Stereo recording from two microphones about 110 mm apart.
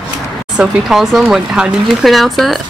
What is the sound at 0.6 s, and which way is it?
Speech, 5° right (ahead or behind).